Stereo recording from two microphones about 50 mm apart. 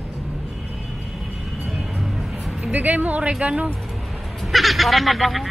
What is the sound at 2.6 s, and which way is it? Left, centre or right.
Speech, right.